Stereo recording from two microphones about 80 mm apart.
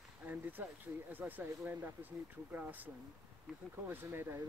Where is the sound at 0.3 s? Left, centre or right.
Right.